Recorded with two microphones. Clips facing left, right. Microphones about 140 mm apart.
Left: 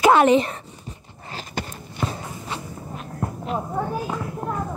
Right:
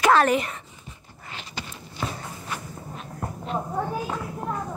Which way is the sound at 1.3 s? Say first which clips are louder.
Left 6 dB; 50° left (ahead or behind).